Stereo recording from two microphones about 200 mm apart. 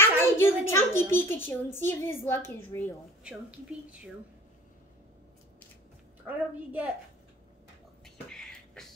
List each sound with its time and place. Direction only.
0.0 s a child's voice: 10° left (ahead or behind)
3.3 s a woman's voice: 5° right (ahead or behind)
6.2 s a woman's voice: 10° right (ahead or behind)
8.0 s a sound: centre (ahead or behind)